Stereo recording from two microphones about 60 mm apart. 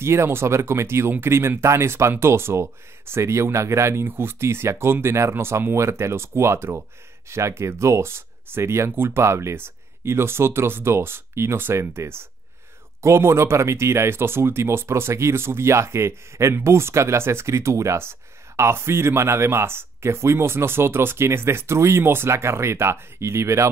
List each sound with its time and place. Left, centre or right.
0.0 s speech: right
5.3 s speech: right